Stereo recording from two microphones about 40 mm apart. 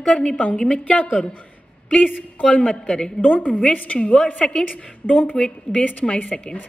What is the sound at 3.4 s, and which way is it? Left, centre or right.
Speech, left.